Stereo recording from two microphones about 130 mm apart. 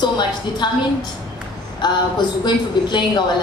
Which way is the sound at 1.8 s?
35° left (ahead or behind).